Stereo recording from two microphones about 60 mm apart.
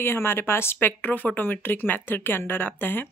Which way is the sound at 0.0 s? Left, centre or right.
Left.